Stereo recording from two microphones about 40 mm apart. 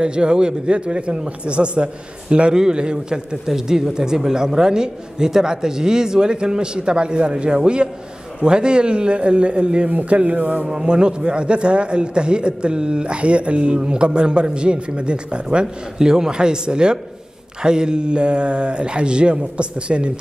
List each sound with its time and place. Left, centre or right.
0.0 s speech: right
3.4 s speech: centre
9.8 s speech: right
10.6 s speech: centre